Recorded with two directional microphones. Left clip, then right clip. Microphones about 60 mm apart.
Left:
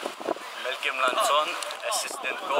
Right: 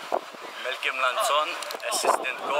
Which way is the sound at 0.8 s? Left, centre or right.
Centre.